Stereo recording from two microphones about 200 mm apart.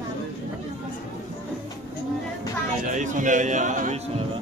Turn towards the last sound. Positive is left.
turn(degrees=-40)  # may be behind; listen again after turning